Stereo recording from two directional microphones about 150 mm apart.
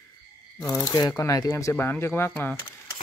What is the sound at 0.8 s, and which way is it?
Speech, 25° left (ahead or behind).